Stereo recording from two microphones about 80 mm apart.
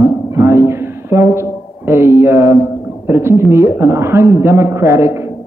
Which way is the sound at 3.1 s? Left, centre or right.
Right.